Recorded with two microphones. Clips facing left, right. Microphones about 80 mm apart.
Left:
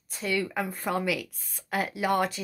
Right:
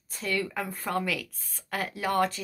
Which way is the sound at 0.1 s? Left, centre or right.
Centre.